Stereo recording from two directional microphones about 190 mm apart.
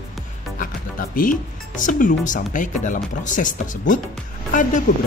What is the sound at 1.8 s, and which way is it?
Speech, 45° left (ahead or behind).